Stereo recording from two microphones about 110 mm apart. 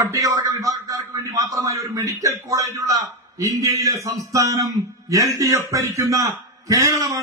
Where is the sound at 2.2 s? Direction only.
30° right (ahead or behind).